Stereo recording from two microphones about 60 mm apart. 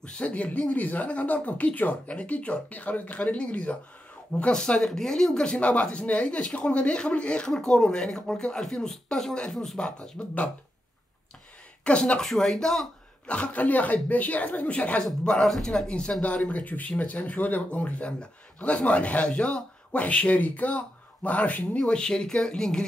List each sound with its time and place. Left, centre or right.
0.0 s a man's voice: left
11.8 s speech: centre
13.3 s a man's voice: left
15.2 s a man's voice: centre